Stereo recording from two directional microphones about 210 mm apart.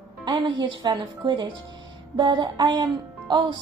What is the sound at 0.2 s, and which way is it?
A woman's voice, 20° right (ahead or behind).